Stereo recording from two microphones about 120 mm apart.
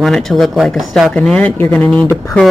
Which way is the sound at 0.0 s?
5° left (ahead or behind).